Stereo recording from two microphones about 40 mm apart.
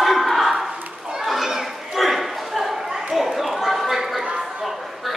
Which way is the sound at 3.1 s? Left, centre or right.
Centre.